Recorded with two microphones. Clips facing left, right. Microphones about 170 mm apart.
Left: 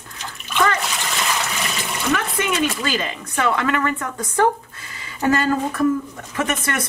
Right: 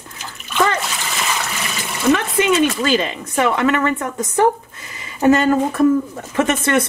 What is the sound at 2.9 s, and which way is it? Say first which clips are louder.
Speech: right 6 dB; 25° right (ahead or behind).